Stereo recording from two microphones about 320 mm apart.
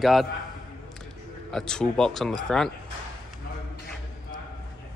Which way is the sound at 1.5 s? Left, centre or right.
Centre.